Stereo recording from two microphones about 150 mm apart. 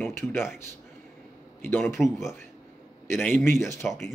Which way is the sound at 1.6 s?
10° left (ahead or behind).